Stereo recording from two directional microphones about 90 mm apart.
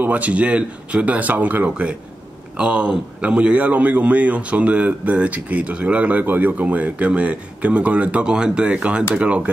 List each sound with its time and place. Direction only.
0.0 s a man's voice: 15° right (ahead or behind)